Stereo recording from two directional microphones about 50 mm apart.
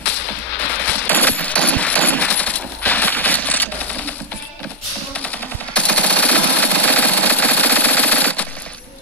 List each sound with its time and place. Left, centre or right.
0.8 s coin: left
5.2 s machine gun: left